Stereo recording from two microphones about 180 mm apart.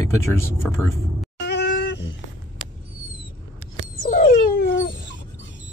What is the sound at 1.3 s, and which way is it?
Cat, 70° left (ahead or behind).